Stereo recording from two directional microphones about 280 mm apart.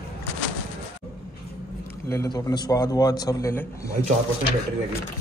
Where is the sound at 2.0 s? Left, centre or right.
Centre.